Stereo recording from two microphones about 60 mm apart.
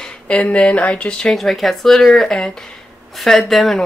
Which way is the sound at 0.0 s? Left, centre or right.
Left.